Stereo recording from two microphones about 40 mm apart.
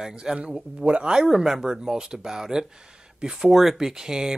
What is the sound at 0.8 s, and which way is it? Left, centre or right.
Speech, right.